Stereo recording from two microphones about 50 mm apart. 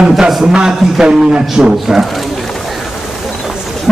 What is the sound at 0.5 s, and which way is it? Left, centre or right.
Speech, centre.